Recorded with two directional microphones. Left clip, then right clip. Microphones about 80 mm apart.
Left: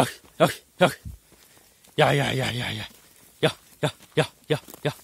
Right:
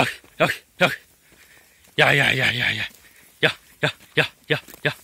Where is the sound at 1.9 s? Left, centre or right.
Left.